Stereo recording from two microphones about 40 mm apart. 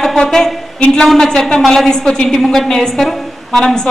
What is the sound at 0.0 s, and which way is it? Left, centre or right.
A woman's voice, centre.